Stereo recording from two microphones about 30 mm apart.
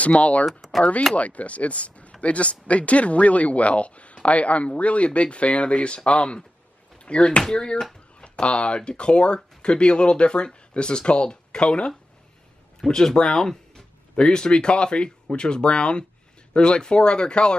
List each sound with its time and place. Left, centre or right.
0.0 s speech: left
12.8 s speech: centre